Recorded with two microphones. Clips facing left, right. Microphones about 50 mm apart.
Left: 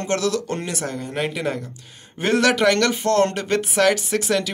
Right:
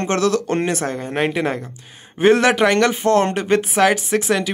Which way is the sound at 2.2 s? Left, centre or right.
Right.